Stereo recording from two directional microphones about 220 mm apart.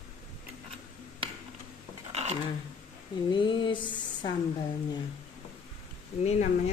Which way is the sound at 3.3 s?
20° left (ahead or behind).